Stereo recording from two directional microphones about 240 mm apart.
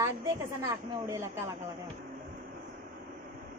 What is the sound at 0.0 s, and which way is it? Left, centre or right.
Speech, centre.